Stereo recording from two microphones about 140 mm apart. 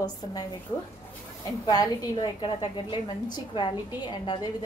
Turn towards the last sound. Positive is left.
turn(degrees=30)  # may be behind; listen again after turning